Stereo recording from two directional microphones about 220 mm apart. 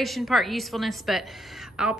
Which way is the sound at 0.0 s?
Centre (ahead or behind).